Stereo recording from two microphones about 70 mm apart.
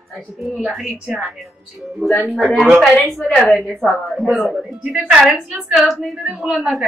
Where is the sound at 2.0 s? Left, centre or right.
Centre.